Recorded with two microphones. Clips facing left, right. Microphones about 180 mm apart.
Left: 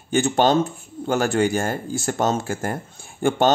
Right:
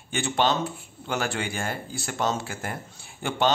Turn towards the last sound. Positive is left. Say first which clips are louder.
# left 7 dB
turn(degrees=45)  # may be behind; listen again after turning